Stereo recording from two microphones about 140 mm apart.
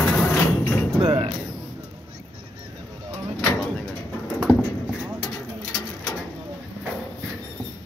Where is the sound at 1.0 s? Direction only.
45° right (ahead or behind).